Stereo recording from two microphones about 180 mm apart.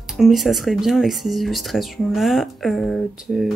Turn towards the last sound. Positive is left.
turn(degrees=0)  # may be behind; listen again after turning